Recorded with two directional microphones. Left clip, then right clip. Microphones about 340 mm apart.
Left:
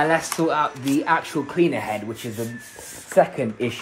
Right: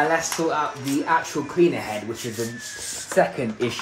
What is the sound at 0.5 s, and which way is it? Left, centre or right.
Speech, left.